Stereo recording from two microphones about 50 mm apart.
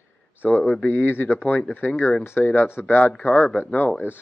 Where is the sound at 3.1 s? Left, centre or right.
Left.